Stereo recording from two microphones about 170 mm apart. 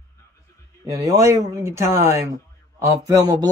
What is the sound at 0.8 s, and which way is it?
Speech, 20° right (ahead or behind).